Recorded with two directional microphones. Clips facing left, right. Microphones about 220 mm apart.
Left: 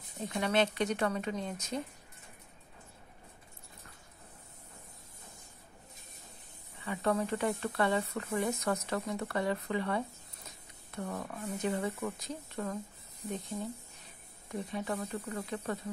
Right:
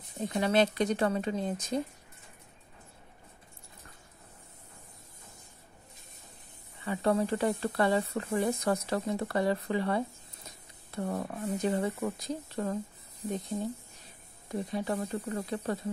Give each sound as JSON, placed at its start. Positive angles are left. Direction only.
{"t": 0.2, "sound": "speech", "side_deg": -35}
{"t": 6.8, "sound": "speech", "side_deg": -35}
{"t": 14.5, "sound": "speech", "side_deg": -35}